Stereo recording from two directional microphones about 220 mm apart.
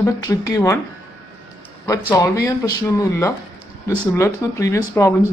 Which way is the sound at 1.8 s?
15° left (ahead or behind).